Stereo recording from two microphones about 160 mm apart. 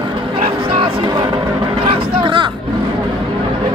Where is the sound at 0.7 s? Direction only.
30° right (ahead or behind).